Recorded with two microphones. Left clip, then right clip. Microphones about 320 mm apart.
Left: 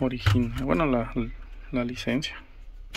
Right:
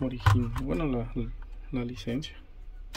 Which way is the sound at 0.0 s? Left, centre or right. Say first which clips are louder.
Left 3 dB; centre.